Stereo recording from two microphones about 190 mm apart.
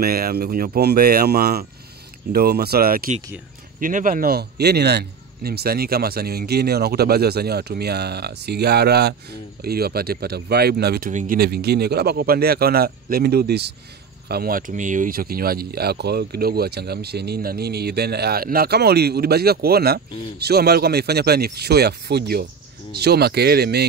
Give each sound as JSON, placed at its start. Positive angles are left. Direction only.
{"t": 0.0, "sound": "speech", "side_deg": -55}
{"t": 11.1, "sound": "speech", "side_deg": -45}